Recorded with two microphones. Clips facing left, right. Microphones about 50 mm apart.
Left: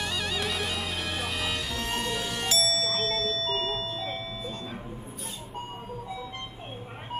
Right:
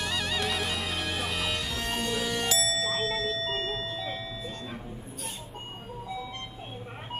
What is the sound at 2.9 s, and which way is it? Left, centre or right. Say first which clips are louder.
Clock: even; right.